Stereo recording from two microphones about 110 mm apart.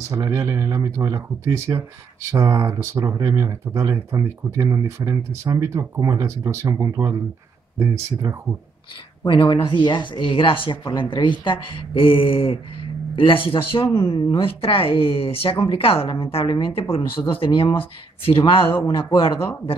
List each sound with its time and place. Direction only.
0.1 s speech: 30° right (ahead or behind)
9.2 s speech: 50° left (ahead or behind)
13.9 s speech: 40° left (ahead or behind)